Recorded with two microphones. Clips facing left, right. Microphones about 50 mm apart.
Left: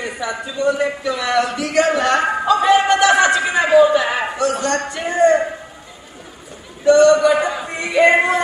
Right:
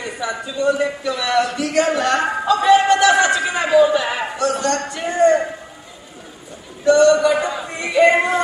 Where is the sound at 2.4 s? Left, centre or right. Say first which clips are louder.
Right 1 dB; left.